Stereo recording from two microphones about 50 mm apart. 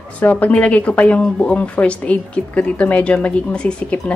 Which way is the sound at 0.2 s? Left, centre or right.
Left.